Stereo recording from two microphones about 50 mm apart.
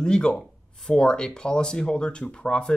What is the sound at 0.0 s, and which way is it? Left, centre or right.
Speech, centre.